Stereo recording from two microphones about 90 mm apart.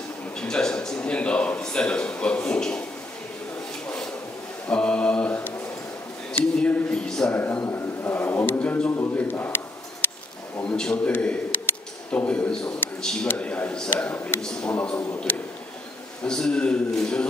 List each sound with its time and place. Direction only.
0.4 s a man's voice: 10° left (ahead or behind)
4.6 s mantra: 10° left (ahead or behind)
6.3 s a sound: 15° left (ahead or behind)
7.3 s a man's voice: 25° left (ahead or behind)
10.6 s a man's voice: 10° left (ahead or behind)
11.1 s a man's voice: 20° left (ahead or behind)